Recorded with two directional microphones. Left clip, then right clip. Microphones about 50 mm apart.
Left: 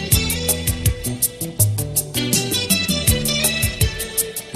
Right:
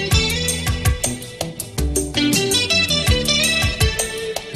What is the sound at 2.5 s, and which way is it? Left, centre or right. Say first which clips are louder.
Music: right 4 dB; left.